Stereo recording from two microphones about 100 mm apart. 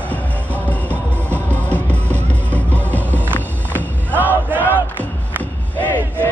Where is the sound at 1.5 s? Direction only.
15° left (ahead or behind).